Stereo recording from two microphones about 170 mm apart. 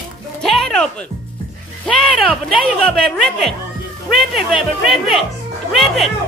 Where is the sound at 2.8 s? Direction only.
5° left (ahead or behind).